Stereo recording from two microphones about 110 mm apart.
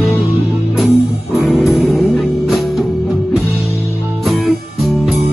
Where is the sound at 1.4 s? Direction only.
Centre (ahead or behind).